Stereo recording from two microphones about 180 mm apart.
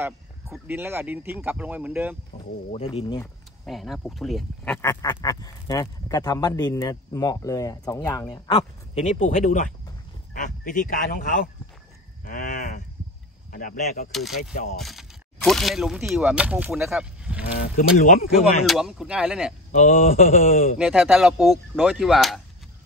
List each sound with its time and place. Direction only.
0.5 s speech: 10° right (ahead or behind)
2.7 s speech: 35° left (ahead or behind)
3.6 s speech: centre (ahead or behind)
4.8 s speech: 20° left (ahead or behind); by 11.4 s 50° left (ahead or behind)
12.3 s a sound: 50° left (ahead or behind)
13.5 s speech: 45° left (ahead or behind)
14.1 s speech: centre (ahead or behind)
17.7 s speech: 45° left (ahead or behind)
18.3 s speech: centre (ahead or behind)
19.7 s speech: 40° left (ahead or behind)
20.8 s speech: 5° right (ahead or behind)